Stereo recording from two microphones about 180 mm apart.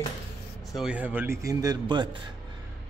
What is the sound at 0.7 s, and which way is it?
A man's voice, 5° right (ahead or behind).